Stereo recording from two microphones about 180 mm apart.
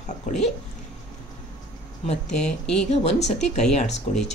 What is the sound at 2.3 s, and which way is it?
Speech, 5° left (ahead or behind).